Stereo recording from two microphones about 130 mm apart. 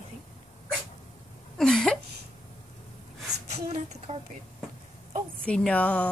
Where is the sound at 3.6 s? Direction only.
55° right (ahead or behind).